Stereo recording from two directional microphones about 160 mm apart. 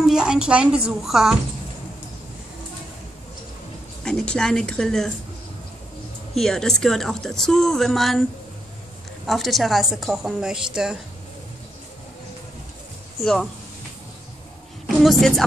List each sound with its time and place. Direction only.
0.0 s a woman's voice: 5° right (ahead or behind)
4.0 s a woman's voice: 5° left (ahead or behind)
6.3 s a woman's voice: 5° left (ahead or behind)
9.2 s a woman's voice: centre (ahead or behind)
13.2 s a woman's voice: centre (ahead or behind)
14.9 s a woman's voice: centre (ahead or behind)